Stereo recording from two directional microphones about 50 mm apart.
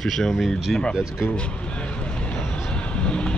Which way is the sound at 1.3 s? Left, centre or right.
Left.